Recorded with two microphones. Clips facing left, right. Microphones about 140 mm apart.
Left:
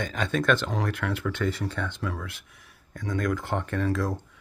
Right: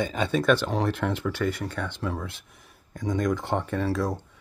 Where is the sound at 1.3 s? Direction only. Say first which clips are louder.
Right 1 dB; centre (ahead or behind).